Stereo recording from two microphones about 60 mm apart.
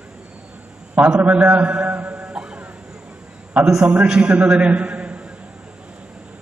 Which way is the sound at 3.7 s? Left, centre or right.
Centre.